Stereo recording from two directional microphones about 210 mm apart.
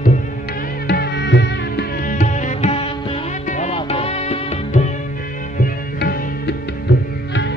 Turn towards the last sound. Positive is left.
turn(degrees=55)  # may be behind; listen again after turning